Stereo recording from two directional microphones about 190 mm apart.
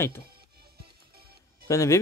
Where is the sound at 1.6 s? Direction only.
15° left (ahead or behind).